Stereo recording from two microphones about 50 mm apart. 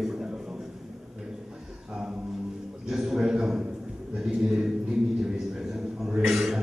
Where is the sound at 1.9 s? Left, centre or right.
Centre.